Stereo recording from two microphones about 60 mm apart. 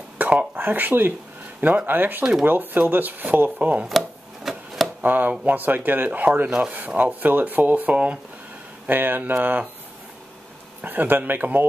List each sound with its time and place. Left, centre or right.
0.2 s speech: right
3.8 s chopping: centre
5.0 s speech: right
8.8 s speech: right
10.8 s speech: right